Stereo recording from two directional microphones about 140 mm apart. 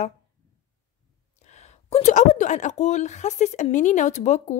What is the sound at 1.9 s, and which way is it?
Speech, 55° left (ahead or behind).